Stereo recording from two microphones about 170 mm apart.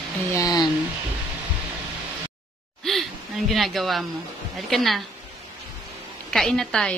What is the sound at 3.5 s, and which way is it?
A woman's voice, centre (ahead or behind).